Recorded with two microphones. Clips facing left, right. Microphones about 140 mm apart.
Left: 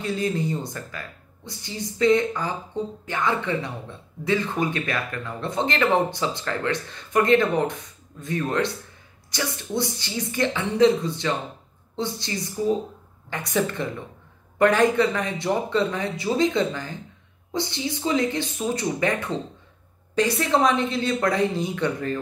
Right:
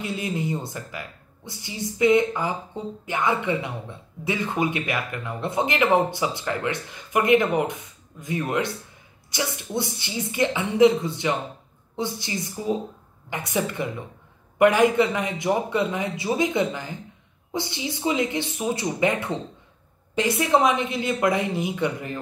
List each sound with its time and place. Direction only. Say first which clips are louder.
0.0 s speech: left 3 dB; 15° right (ahead or behind)
20.2 s speech: even; 20° right (ahead or behind)